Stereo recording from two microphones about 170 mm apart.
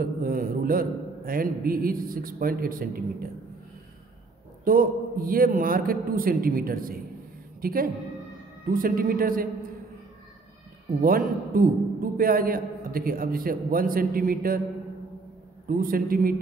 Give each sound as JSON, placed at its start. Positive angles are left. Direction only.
{"t": 0.0, "sound": "a man's voice", "side_deg": -60}
{"t": 4.6, "sound": "a man's voice", "side_deg": -55}
{"t": 11.0, "sound": "a man's voice", "side_deg": -55}
{"t": 15.7, "sound": "a man's voice", "side_deg": -55}